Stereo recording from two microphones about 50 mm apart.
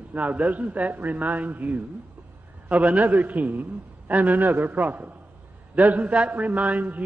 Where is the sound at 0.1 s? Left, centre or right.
Right.